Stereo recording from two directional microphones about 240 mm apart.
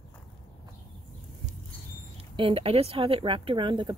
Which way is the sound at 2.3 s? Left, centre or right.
Right.